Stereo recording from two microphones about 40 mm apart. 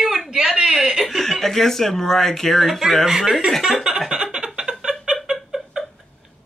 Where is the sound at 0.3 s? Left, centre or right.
Centre.